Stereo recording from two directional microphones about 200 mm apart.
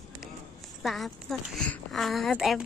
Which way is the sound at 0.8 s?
Centre (ahead or behind).